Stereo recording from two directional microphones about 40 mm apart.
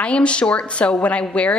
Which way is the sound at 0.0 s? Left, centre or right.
Left.